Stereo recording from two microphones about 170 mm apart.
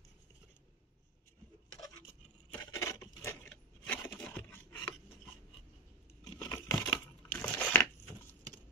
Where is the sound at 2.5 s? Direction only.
15° left (ahead or behind).